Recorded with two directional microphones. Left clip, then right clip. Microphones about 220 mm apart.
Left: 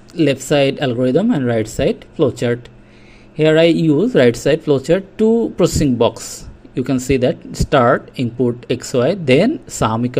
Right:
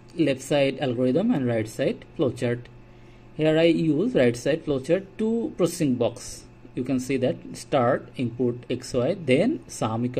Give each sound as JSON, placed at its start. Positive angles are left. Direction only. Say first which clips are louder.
{"t": 0.1, "sound": "speech", "louder": "left 8 dB", "side_deg": 15}